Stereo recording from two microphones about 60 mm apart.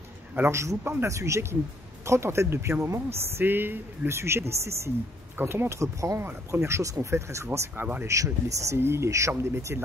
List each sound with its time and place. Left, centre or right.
0.5 s speech: right
6.1 s speech: right
8.7 s speech: right